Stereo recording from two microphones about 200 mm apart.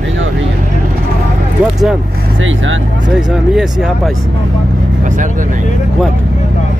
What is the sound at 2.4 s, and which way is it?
Speech, 75° right (ahead or behind).